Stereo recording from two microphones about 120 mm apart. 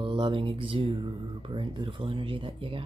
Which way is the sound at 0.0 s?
45° right (ahead or behind).